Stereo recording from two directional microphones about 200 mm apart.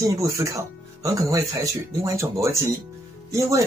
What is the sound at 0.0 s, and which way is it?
Speech, 15° right (ahead or behind).